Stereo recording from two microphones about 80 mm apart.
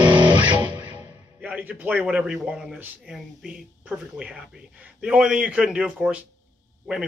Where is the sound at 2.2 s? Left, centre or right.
Centre.